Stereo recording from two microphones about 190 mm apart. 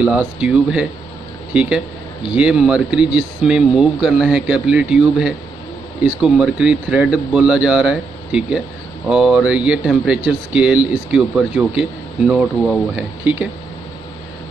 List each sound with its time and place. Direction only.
0.0 s speech: 5° right (ahead or behind)